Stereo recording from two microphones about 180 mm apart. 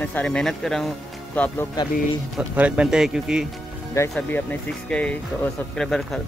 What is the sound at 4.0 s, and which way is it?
Speech, 20° left (ahead or behind).